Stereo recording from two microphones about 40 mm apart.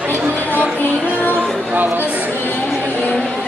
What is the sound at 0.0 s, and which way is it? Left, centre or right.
Chatter, right.